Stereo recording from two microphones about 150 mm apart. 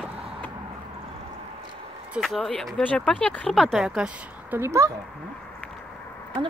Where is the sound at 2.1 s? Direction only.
Centre (ahead or behind); by 4.9 s 20° right (ahead or behind).